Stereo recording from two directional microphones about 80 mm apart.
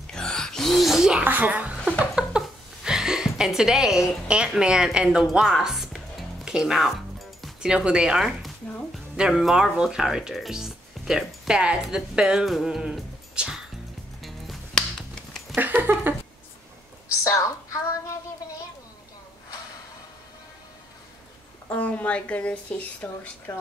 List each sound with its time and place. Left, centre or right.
0.0 s gasp: centre
1.2 s speech: right
2.1 s a sound: centre
4.5 s speech: centre
5.3 s music: centre
7.6 s speech: centre
14.2 s music: centre
15.5 s a sound: right
17.1 s a sound: left
21.6 s speech: centre